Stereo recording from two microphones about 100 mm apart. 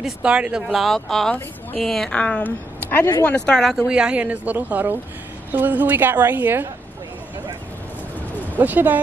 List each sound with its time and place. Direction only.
0.0 s a woman's voice: 10° right (ahead or behind); by 3.7 s 10° left (ahead or behind)
3.7 s a woman's voice: 10° right (ahead or behind)
8.5 s speech: 15° right (ahead or behind)